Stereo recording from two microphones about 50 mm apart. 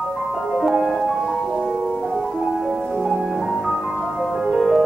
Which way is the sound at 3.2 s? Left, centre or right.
Centre.